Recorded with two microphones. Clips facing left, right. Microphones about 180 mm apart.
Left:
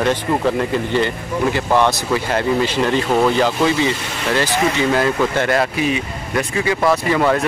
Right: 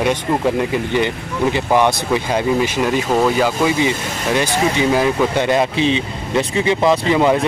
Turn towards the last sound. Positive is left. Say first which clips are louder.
# right 2 dB
turn(degrees=-15)  # may be behind; listen again after turning